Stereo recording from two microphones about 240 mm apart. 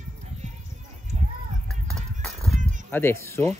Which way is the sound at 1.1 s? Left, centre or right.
Right.